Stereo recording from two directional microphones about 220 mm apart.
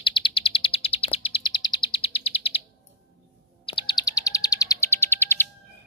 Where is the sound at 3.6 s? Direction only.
20° left (ahead or behind).